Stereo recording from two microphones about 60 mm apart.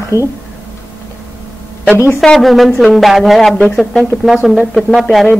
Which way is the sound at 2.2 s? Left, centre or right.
Centre.